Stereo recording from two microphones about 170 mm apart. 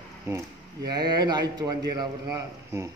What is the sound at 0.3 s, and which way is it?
A man's voice, 15° right (ahead or behind).